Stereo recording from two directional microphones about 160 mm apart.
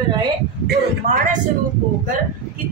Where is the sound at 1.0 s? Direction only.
45° right (ahead or behind).